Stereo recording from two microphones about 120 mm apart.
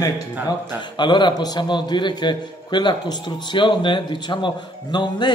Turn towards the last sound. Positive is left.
turn(degrees=40)  # may be behind; listen again after turning